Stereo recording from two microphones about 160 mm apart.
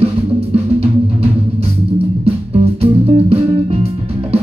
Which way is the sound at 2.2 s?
40° right (ahead or behind).